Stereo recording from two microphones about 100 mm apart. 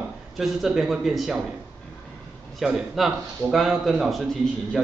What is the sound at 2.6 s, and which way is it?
A man's voice, 5° right (ahead or behind).